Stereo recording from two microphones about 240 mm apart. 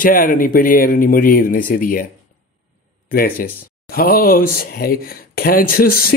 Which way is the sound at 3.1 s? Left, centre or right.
Left.